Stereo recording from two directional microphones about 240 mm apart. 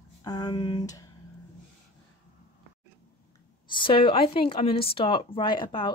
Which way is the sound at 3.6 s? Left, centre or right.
Left.